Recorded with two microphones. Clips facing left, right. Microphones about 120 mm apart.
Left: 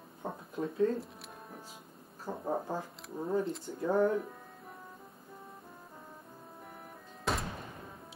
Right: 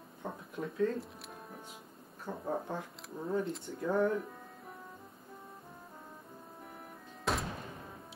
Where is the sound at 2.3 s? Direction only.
15° left (ahead or behind).